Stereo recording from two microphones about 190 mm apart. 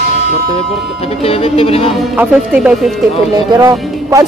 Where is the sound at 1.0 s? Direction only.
30° left (ahead or behind).